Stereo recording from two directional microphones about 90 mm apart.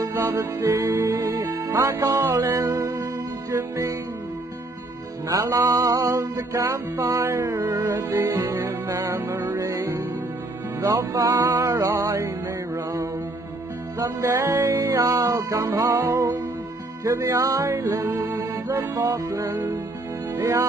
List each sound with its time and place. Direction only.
0.0 s music: 35° right (ahead or behind)
5.3 s music: 40° right (ahead or behind)
12.7 s mantra: 40° right (ahead or behind)
13.9 s music: 40° right (ahead or behind)
17.7 s music: 30° right (ahead or behind)